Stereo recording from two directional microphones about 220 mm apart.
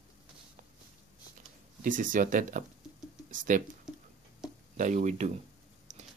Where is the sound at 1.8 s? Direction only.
35° right (ahead or behind).